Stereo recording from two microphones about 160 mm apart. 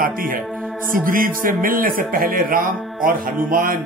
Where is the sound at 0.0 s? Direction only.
60° right (ahead or behind).